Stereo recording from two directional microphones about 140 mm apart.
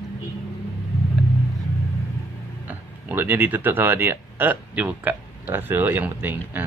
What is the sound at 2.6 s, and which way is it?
Speech, 15° right (ahead or behind).